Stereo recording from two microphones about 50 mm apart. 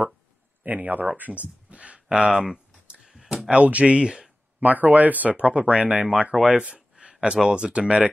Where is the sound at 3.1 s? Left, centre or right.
Centre.